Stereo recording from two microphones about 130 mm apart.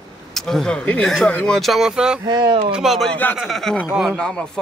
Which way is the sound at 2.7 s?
Centre (ahead or behind).